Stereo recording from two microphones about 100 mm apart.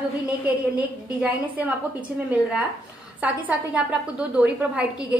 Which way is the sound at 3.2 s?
15° right (ahead or behind).